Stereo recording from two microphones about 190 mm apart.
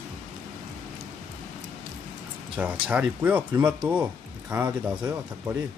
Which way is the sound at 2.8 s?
5° right (ahead or behind).